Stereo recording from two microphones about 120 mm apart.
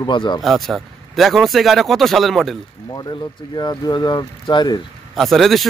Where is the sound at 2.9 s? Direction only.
35° left (ahead or behind).